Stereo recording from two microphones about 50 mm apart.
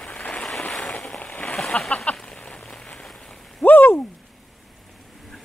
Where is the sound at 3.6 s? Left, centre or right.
Left.